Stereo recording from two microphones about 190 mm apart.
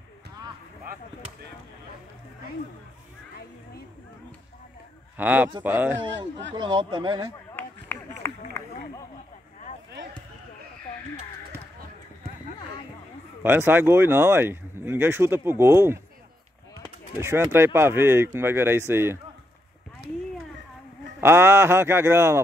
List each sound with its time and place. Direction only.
5.1 s speech: 10° right (ahead or behind)
5.9 s speech: 75° right (ahead or behind)
6.5 s speech: 25° right (ahead or behind)
7.5 s run: 10° left (ahead or behind)
8.6 s a sound: 15° left (ahead or behind)
13.4 s speech: 10° right (ahead or behind)
21.2 s speech: 15° right (ahead or behind)